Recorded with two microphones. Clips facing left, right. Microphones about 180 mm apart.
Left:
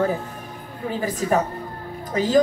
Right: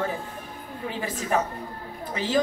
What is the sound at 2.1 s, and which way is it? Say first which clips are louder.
Speech: left 7 dB; 40° left (ahead or behind).